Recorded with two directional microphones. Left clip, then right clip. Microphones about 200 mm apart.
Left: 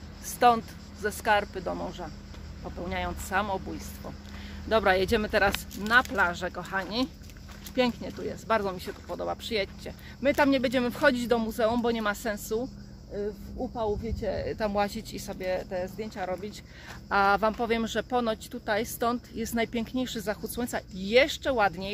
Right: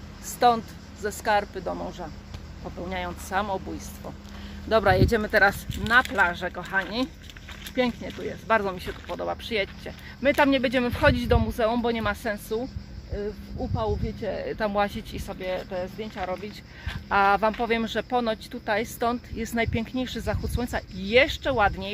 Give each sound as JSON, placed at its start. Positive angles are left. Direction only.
{"t": 0.4, "sound": "speech", "side_deg": 15}